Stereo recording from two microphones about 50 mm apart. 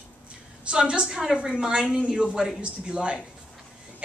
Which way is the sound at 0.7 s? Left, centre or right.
Centre.